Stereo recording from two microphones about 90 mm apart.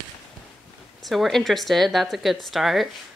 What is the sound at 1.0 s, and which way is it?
Speech, centre (ahead or behind).